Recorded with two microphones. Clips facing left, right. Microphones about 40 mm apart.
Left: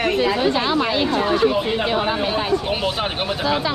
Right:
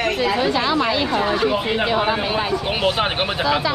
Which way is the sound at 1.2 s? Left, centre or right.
Centre.